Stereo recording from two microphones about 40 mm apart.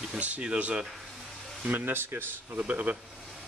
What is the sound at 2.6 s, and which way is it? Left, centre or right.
Speech, right.